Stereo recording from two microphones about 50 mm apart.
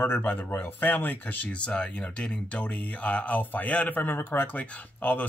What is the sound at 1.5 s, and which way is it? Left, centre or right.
Speech, left.